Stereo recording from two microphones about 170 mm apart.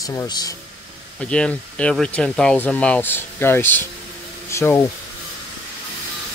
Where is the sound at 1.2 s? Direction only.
5° left (ahead or behind).